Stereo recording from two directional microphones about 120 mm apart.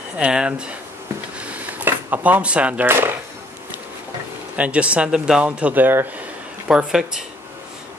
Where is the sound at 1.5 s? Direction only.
15° right (ahead or behind).